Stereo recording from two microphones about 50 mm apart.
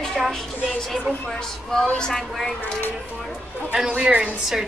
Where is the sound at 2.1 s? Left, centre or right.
Centre.